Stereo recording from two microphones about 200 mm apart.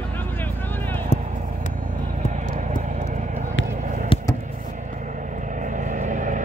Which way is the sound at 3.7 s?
40° right (ahead or behind).